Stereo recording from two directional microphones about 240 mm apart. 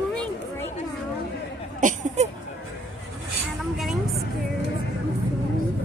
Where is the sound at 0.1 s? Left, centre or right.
Centre.